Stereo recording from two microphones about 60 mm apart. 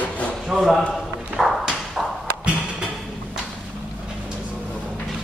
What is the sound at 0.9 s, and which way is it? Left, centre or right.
Clip-clop, centre.